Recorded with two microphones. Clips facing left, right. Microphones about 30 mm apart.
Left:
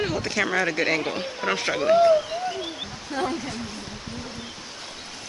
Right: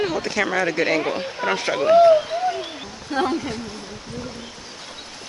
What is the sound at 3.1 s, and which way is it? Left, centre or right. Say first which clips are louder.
Speech: right 5 dB; right.